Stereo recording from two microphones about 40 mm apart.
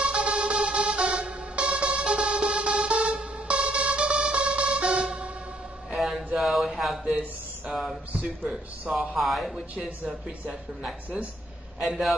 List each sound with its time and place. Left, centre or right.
0.0 s music: right
5.9 s a sound: centre
7.7 s speech: centre
9.1 s speech: centre
10.0 s a man's voice: right
11.8 s speech: centre